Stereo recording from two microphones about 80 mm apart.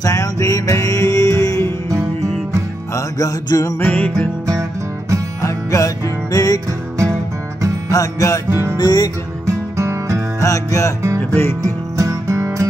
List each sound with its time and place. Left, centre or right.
0.0 s music: left
2.9 s music: left
3.8 s music: centre
5.4 s music: left
7.9 s music: left
8.5 s music: right
8.7 s music: left
9.5 s music: right
10.4 s music: left
11.6 s music: right